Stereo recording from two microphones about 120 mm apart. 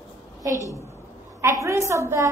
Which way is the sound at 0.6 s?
25° left (ahead or behind).